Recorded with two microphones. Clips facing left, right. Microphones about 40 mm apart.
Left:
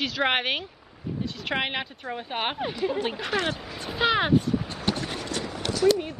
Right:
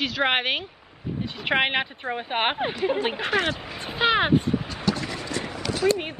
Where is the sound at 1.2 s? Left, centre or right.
Right.